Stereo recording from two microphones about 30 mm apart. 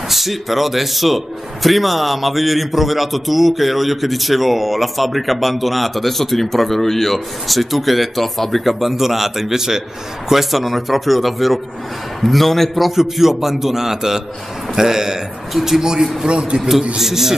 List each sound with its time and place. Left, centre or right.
0.1 s a man's voice: centre
12.9 s a man's voice: centre
15.5 s a man's voice: centre
15.8 s a man's voice: right
16.3 s a man's voice: right
17.0 s a man's voice: centre